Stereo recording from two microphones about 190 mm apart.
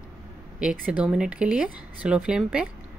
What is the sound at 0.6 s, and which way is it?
Speech, 5° right (ahead or behind).